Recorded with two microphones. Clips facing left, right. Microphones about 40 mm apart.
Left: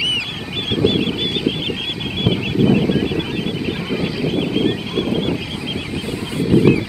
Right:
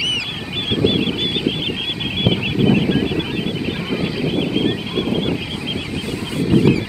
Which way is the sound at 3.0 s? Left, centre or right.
Centre.